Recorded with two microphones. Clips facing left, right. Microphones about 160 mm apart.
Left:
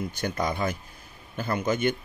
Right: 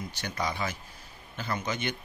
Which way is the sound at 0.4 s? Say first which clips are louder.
Left 3 dB; 50° left (ahead or behind).